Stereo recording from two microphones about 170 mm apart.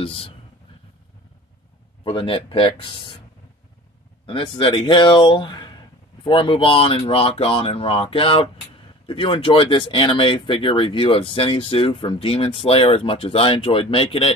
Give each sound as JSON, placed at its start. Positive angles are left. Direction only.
{"t": 0.0, "sound": "speech", "side_deg": 35}
{"t": 2.0, "sound": "speech", "side_deg": 30}
{"t": 4.3, "sound": "speech", "side_deg": 30}